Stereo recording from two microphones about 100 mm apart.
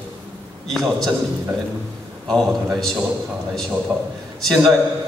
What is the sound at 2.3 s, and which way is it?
Speech, centre (ahead or behind).